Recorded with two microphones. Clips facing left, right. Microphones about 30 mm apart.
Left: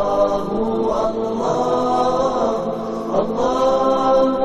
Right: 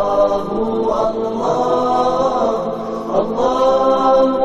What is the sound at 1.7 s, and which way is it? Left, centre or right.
Chant, centre.